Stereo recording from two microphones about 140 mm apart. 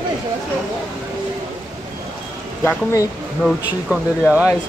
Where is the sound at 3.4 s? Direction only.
Centre (ahead or behind).